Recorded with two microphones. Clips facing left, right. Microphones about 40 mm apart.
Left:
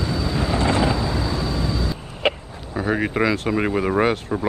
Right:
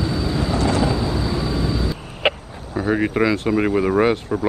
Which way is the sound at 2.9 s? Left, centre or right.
Centre.